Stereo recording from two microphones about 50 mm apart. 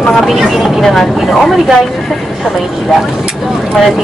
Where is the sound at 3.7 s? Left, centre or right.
Centre.